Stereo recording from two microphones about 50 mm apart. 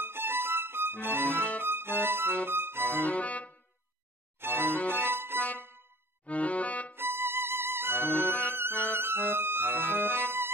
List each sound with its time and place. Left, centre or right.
0.0 s music: right
1.2 s music: left
1.6 s music: right
2.9 s music: left
4.4 s music: right
4.6 s music: left
5.0 s music: right
5.4 s music: left
7.0 s music: right
8.0 s music: left
9.0 s music: right
9.7 s music: left